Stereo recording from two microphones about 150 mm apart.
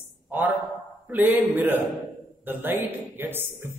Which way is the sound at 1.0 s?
10° right (ahead or behind).